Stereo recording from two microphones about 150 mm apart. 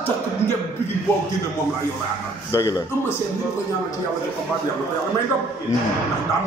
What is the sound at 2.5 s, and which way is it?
Speech, 20° left (ahead or behind).